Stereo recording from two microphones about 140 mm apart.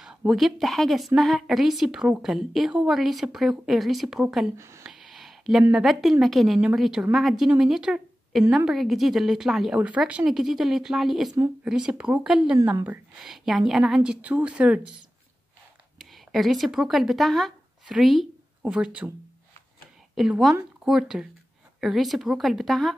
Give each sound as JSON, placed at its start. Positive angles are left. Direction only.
{"t": 0.0, "sound": "speech", "side_deg": -5}
{"t": 4.6, "sound": "speech", "side_deg": -20}
{"t": 4.8, "sound": "speech", "side_deg": 0}
{"t": 16.0, "sound": "speech", "side_deg": 0}
{"t": 20.2, "sound": "speech", "side_deg": 0}